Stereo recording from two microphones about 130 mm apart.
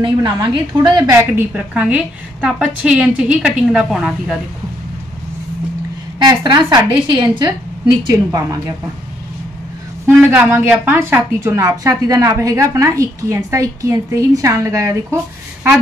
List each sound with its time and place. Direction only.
0.0 s a woman's voice: 35° right (ahead or behind)
1.1 s a woman's voice: 15° right (ahead or behind)
6.1 s a woman's voice: 35° right (ahead or behind)
10.0 s a woman's voice: 15° right (ahead or behind)